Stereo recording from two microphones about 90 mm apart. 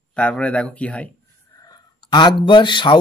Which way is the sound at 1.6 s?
50° left (ahead or behind).